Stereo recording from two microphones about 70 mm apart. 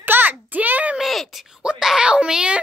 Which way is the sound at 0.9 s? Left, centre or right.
Centre.